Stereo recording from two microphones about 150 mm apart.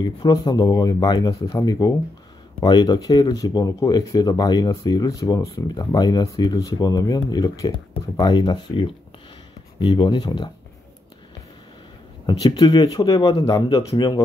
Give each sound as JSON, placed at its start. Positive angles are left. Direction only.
{"t": 0.0, "sound": "speech", "side_deg": 25}
{"t": 12.3, "sound": "speech", "side_deg": 30}